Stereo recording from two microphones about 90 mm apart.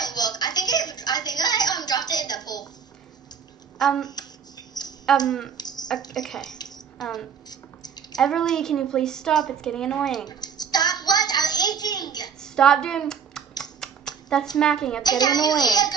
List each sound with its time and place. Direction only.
0.0 s a sound: 50° left (ahead or behind)
3.7 s a woman's voice: 5° left (ahead or behind)
4.7 s a sound: 50° left (ahead or behind)
5.2 s speech: 5° left (ahead or behind)
5.6 s bathtub: 50° left (ahead or behind)
6.1 s a woman's voice: 5° left (ahead or behind)
7.4 s drip: 50° left (ahead or behind)
8.2 s a woman's voice: 5° left (ahead or behind)
10.2 s a sound: 50° left (ahead or behind)
12.4 s a sound: 5° left (ahead or behind)
14.6 s a woman's voice: 5° left (ahead or behind)
15.0 s a child's voice: 50° left (ahead or behind)